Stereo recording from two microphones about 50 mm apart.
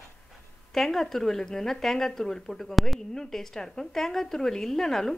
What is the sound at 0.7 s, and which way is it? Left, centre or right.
A woman's voice, centre.